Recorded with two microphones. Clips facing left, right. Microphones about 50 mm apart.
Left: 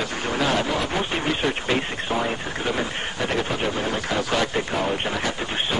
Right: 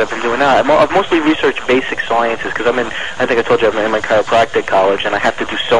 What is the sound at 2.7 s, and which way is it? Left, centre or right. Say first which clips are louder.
Speech: right 9 dB; right.